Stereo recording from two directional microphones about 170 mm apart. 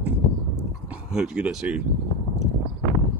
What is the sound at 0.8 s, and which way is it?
Speech, 5° right (ahead or behind).